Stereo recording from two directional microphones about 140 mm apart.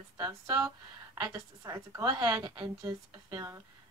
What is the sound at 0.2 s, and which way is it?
Speech, 25° right (ahead or behind).